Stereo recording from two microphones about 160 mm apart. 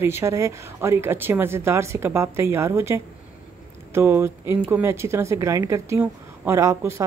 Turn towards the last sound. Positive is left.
turn(degrees=-20)  # may be behind; listen again after turning